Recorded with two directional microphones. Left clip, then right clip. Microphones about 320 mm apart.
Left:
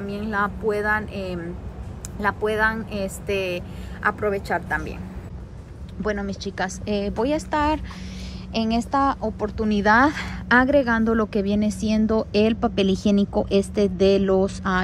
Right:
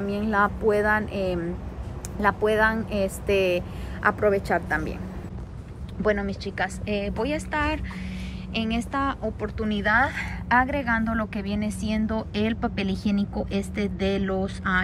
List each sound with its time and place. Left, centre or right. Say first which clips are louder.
0.0 s speech: right 2 dB; centre
6.0 s speech: right 2 dB; centre